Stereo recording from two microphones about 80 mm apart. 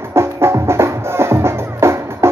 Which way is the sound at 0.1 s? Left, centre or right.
Right.